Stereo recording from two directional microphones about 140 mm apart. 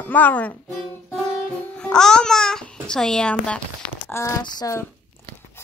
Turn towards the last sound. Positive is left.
turn(degrees=25)  # may be behind; listen again after turning